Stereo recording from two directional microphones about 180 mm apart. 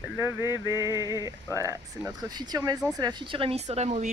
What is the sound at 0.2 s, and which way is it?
Speech, 15° right (ahead or behind).